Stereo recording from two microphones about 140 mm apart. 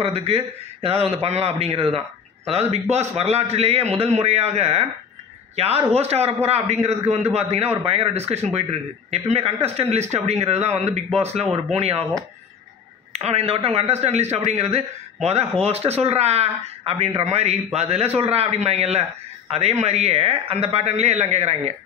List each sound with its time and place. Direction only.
0.0 s a man's voice: 50° right (ahead or behind)
5.9 s a man's voice: 45° right (ahead or behind)
13.1 s a man's voice: 50° right (ahead or behind)